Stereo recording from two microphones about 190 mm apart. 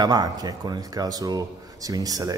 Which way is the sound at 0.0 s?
20° right (ahead or behind).